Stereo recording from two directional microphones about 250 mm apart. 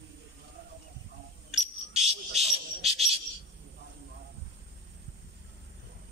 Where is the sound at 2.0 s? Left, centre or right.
Right.